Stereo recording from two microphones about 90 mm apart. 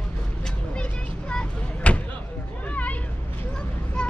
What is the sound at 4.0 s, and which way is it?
Vehicle, 10° left (ahead or behind).